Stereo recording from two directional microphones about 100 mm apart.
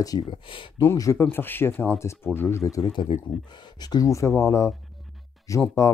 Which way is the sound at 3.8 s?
40° left (ahead or behind).